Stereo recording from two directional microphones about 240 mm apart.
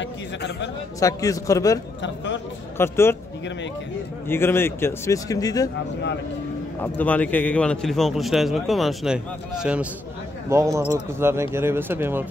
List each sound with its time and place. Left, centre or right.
0.0 s a man's voice: left
0.9 s a man's voice: centre
2.0 s a man's voice: left
2.8 s a man's voice: centre
4.3 s a man's voice: centre
6.8 s a man's voice: centre